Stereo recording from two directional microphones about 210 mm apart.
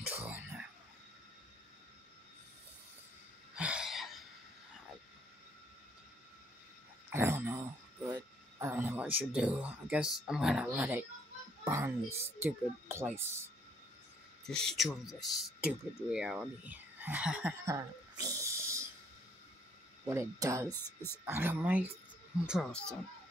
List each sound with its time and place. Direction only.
0.2 s a sound: 5° right (ahead or behind)
3.5 s a sound: 5° right (ahead or behind)
7.1 s a sound: 10° right (ahead or behind)
10.2 s speech: 5° right (ahead or behind)
14.4 s speech: 5° left (ahead or behind); by 18.9 s 15° right (ahead or behind)
20.1 s speech: 15° right (ahead or behind)
20.8 s speech: 10° left (ahead or behind)
21.3 s speech: 10° right (ahead or behind)
22.5 s speech: 5° left (ahead or behind)